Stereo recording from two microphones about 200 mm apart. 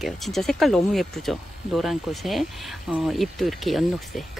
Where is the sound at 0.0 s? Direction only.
Centre (ahead or behind).